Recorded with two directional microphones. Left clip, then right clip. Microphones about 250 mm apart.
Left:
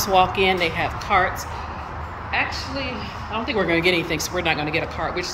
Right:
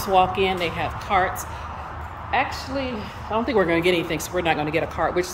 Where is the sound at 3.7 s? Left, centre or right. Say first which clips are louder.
Left 1 dB; centre.